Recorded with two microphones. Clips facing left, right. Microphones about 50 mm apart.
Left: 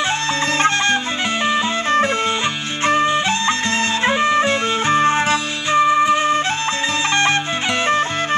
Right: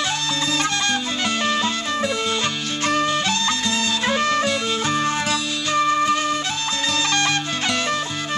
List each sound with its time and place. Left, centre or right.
0.6 s music: left
1.4 s music: left
1.9 s music: left
2.8 s music: left